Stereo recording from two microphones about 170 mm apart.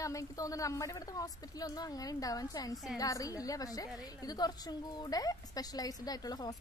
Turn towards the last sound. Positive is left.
turn(degrees=20)  # may be behind; listen again after turning